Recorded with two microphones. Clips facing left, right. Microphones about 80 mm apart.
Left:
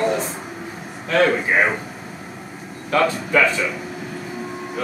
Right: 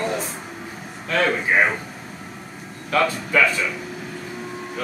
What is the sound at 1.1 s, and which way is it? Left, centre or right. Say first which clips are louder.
Speech: left 3 dB; centre.